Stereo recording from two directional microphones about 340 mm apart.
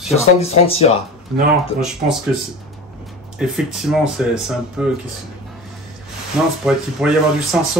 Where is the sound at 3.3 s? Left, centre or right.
Centre.